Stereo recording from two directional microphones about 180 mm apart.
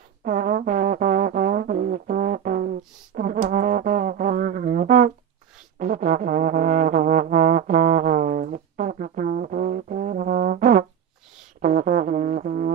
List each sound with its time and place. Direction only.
0.2 s music: 45° right (ahead or behind)